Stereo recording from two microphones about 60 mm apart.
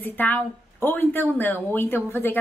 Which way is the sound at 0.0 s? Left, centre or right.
Left.